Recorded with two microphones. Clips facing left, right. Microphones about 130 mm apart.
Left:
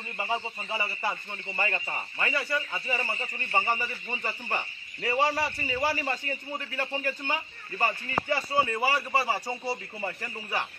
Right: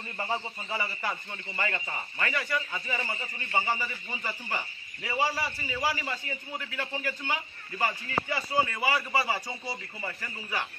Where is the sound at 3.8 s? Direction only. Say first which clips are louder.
Left 2 dB; 30° left (ahead or behind).